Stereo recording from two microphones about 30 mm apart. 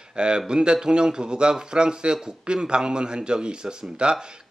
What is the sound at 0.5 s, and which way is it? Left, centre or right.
A man's voice, right.